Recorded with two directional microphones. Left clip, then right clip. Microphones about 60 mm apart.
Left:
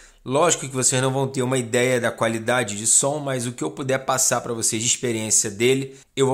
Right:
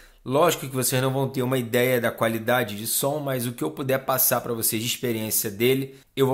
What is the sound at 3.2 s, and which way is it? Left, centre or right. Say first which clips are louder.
Speech: left 1 dB; centre.